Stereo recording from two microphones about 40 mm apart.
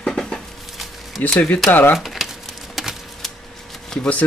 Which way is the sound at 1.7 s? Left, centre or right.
Left.